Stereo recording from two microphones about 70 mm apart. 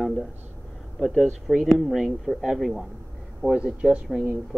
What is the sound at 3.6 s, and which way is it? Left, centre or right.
Speech, centre.